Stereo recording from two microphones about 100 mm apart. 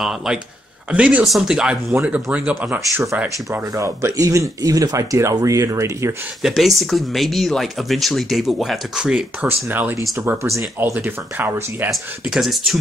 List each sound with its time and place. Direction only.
0.0 s speech: 5° right (ahead or behind)
3.7 s speech: 35° right (ahead or behind)
6.4 s speech: centre (ahead or behind); by 9.9 s 20° right (ahead or behind)
10.1 s speech: 30° right (ahead or behind)
11.9 s speech: centre (ahead or behind)